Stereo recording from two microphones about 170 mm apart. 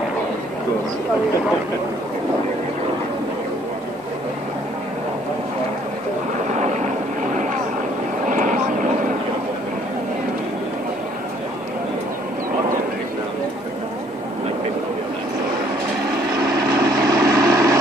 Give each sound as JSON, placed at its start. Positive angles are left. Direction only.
{"t": 8.3, "sound": "vehicle", "side_deg": -50}
{"t": 16.3, "sound": "vehicle", "side_deg": -20}